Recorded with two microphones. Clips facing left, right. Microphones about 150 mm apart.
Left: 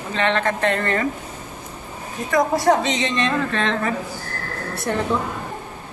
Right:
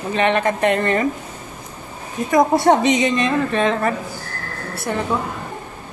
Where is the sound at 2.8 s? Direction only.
10° right (ahead or behind).